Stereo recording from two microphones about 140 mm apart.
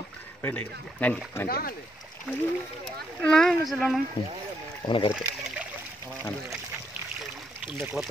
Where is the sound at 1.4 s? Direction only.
90° left.